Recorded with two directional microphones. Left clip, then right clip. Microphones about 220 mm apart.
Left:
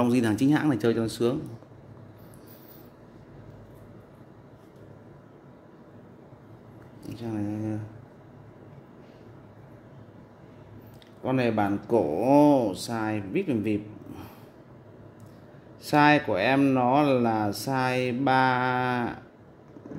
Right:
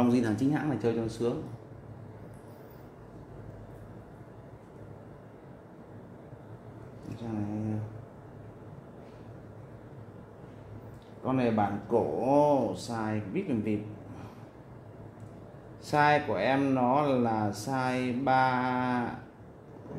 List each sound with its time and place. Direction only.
0.0 s speech: 35° left (ahead or behind); by 1.3 s 55° left (ahead or behind)
11.2 s speech: 55° left (ahead or behind)
15.8 s speech: 50° left (ahead or behind)